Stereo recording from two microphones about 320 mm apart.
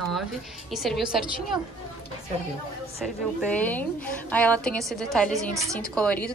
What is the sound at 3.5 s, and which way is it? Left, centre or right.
A woman's voice, centre.